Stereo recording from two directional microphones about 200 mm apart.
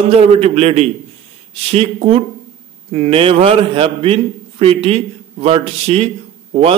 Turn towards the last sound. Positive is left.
turn(degrees=-30)  # may be behind; listen again after turning